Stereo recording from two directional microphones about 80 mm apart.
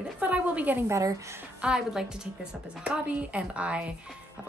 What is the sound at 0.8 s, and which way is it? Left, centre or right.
Speech, right.